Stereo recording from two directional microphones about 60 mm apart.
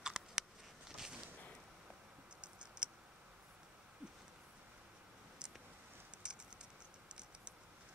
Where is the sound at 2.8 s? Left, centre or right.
Centre.